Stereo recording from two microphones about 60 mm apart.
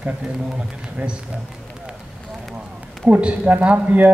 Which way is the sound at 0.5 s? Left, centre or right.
Centre.